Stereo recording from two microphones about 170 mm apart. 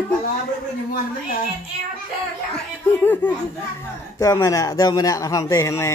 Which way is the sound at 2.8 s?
10° left (ahead or behind).